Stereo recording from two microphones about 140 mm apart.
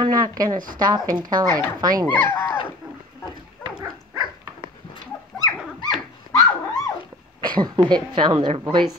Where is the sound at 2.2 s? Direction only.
15° left (ahead or behind).